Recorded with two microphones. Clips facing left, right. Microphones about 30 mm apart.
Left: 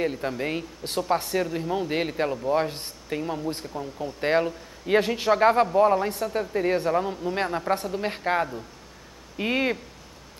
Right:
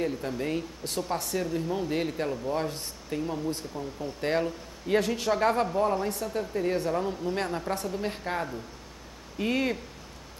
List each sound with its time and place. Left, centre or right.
0.0 s speech: left